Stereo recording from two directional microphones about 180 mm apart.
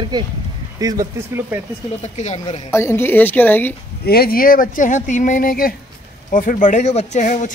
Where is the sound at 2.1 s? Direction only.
40° left (ahead or behind).